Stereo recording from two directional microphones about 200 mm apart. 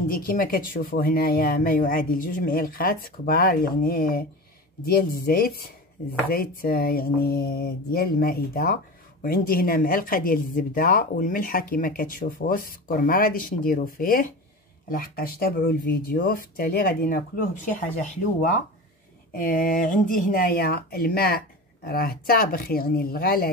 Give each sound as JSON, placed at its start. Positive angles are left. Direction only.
{"t": 0.1, "sound": "speech", "side_deg": 45}
{"t": 19.3, "sound": "speech", "side_deg": 45}